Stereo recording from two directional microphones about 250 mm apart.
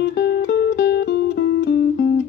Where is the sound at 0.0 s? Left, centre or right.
Left.